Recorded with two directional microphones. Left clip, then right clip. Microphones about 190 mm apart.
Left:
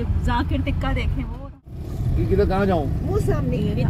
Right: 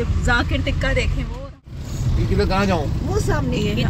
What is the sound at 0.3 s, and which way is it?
Speech, 5° right (ahead or behind).